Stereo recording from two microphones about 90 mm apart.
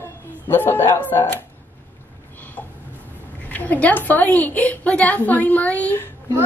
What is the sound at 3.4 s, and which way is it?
A woman's voice, 20° left (ahead or behind).